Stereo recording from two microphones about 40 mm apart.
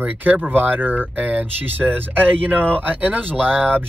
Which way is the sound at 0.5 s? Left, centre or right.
Right.